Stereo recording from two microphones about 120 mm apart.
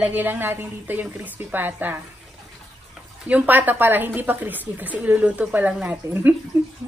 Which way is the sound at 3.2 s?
15° right (ahead or behind).